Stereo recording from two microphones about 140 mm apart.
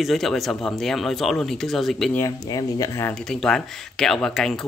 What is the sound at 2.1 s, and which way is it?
Speech, 25° left (ahead or behind).